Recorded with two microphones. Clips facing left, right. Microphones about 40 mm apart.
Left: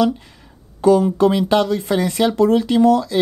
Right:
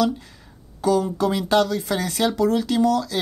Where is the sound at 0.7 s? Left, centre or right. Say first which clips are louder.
Left 7 dB; left.